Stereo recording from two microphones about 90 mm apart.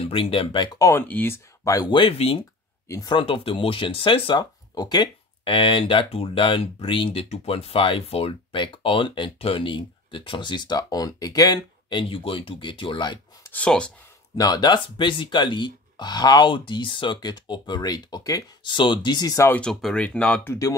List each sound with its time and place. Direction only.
0.0 s speech: 85° left
0.9 s speech: 25° left (ahead or behind); by 1.9 s 40° left (ahead or behind)
1.9 s speech: 80° left
3.1 s speech: 70° left (ahead or behind)
4.4 s speech: 50° left (ahead or behind)
5.4 s speech: 80° left; by 13.2 s 60° left (ahead or behind)
13.5 s speech: 10° left (ahead or behind)
14.3 s speech: 45° left (ahead or behind)
18.6 s speech: 60° left (ahead or behind)
19.7 s speech: 5° left (ahead or behind)